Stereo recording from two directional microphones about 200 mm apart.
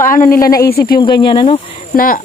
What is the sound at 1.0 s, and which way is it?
Speech, 20° left (ahead or behind).